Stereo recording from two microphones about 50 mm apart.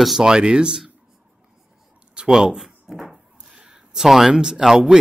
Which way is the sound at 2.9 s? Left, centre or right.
Centre.